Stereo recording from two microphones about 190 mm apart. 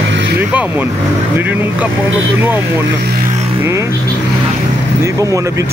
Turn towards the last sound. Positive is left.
turn(degrees=-15)  # may be behind; listen again after turning